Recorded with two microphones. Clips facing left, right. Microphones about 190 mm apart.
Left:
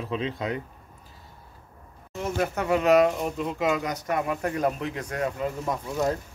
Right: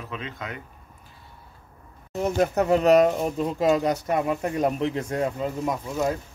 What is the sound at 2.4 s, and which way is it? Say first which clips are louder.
Speech: right 4 dB; 35° right (ahead or behind).